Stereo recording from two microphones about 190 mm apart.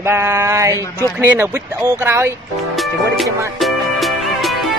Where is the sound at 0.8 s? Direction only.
15° left (ahead or behind).